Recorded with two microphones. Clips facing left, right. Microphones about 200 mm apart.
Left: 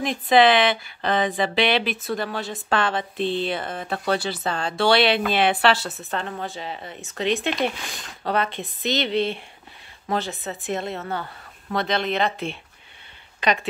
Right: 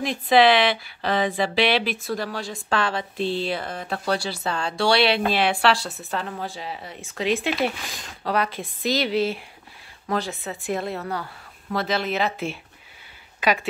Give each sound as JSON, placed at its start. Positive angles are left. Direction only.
{"t": 0.0, "sound": "speech", "side_deg": 0}